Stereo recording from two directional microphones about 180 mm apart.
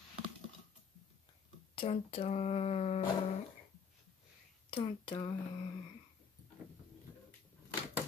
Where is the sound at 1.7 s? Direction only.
35° left (ahead or behind).